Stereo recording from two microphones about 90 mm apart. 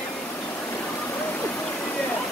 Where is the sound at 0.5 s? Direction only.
25° left (ahead or behind).